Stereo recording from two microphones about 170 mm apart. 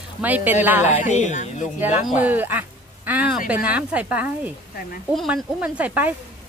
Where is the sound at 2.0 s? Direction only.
10° right (ahead or behind).